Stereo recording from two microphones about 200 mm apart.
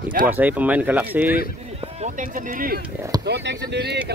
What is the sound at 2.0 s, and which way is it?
Speech, 40° right (ahead or behind).